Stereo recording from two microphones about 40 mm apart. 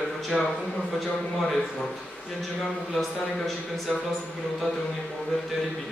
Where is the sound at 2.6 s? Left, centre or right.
Centre.